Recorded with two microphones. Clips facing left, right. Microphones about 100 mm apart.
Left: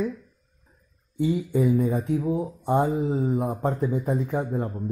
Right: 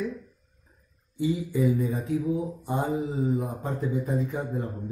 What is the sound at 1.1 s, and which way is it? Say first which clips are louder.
Mantra: left 3 dB; 50° left (ahead or behind).